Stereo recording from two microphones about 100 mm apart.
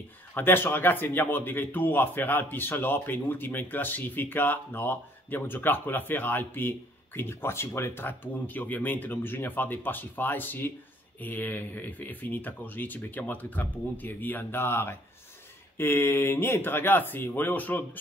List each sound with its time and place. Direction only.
0.3 s speech: 20° left (ahead or behind)